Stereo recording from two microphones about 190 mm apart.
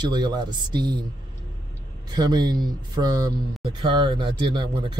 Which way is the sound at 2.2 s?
20° right (ahead or behind).